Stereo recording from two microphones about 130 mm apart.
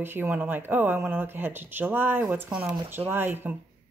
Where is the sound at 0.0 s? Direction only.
15° right (ahead or behind).